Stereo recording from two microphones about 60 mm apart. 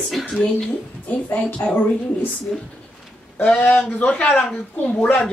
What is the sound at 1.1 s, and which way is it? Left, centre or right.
Speech, left.